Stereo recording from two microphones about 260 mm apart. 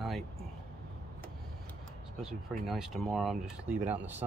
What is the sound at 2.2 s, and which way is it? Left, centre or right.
Speech, centre.